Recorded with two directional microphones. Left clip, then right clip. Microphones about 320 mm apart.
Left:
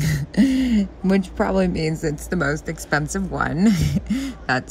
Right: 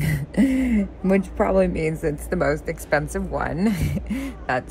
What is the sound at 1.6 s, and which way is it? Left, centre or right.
Speech, left.